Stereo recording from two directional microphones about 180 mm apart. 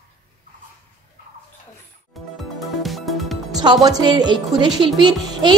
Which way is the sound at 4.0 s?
25° right (ahead or behind).